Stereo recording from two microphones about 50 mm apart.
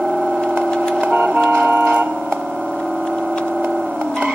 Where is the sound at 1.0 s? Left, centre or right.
Right.